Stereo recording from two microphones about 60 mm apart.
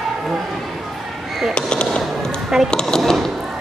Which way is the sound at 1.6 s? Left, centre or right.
Centre.